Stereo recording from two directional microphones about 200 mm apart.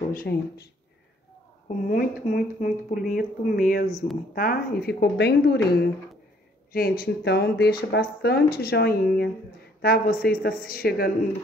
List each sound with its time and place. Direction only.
0.1 s speech: 50° left (ahead or behind)
1.7 s speech: 40° left (ahead or behind)
6.7 s speech: 50° left (ahead or behind)